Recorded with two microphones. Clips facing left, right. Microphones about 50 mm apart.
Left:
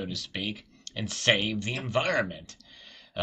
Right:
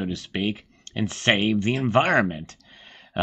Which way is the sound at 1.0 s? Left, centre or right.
Centre.